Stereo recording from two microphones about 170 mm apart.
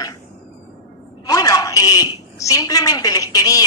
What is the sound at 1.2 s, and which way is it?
A man's voice, 20° left (ahead or behind).